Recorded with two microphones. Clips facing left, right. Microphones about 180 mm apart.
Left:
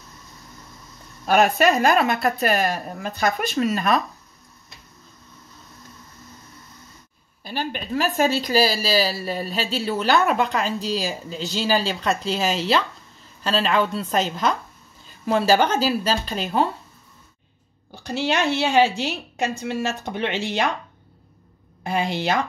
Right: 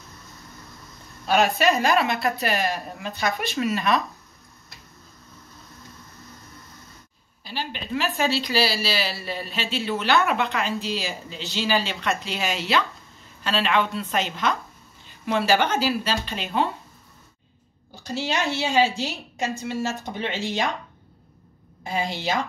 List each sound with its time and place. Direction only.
1.2 s a woman's voice: 55° left (ahead or behind)
2.0 s a woman's voice: 40° left (ahead or behind)
7.4 s a woman's voice: 50° left (ahead or behind)
18.0 s a woman's voice: 60° left (ahead or behind)
21.8 s a woman's voice: 60° left (ahead or behind)